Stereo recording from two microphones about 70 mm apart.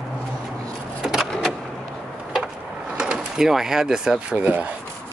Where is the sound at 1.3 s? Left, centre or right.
Centre.